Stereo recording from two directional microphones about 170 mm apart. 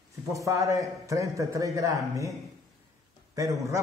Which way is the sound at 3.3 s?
20° right (ahead or behind).